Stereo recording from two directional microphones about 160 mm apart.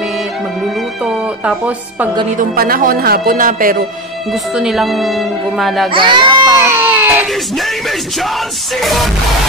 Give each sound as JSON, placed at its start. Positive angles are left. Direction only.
{"t": 1.0, "sound": "speech", "side_deg": -5}
{"t": 2.3, "sound": "speech", "side_deg": -65}
{"t": 4.3, "sound": "speech", "side_deg": 0}
{"t": 5.9, "sound": "baby cry", "side_deg": -30}
{"t": 8.8, "sound": "speech", "side_deg": 0}